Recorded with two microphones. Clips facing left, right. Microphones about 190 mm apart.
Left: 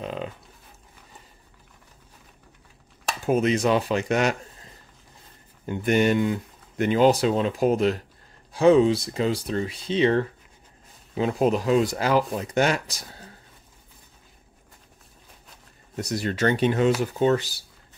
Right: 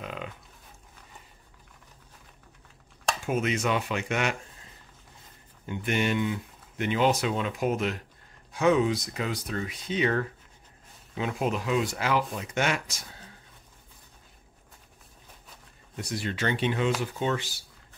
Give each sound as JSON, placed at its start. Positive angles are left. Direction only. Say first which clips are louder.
{"t": 0.0, "sound": "livestock", "louder": "left 6 dB", "side_deg": 30}
{"t": 3.3, "sound": "speech", "louder": "left 7 dB", "side_deg": 35}
{"t": 5.7, "sound": "speech", "louder": "left 7 dB", "side_deg": 40}
{"t": 16.0, "sound": "speech", "louder": "left 6 dB", "side_deg": 40}